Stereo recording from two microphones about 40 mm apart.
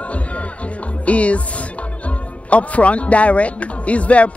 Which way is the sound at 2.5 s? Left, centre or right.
Left.